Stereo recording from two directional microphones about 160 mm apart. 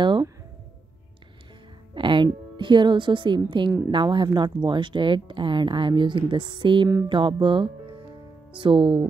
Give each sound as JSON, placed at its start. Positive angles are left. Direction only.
{"t": 2.0, "sound": "speech", "side_deg": -30}
{"t": 7.1, "sound": "music", "side_deg": -30}